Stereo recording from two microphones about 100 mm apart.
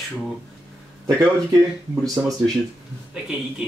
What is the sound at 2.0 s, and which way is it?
Speech, 35° right (ahead or behind).